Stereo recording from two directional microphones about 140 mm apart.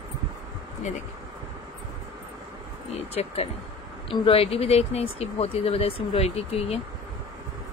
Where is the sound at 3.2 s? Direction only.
50° left (ahead or behind).